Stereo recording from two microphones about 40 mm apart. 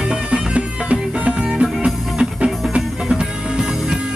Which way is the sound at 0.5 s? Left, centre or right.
Right.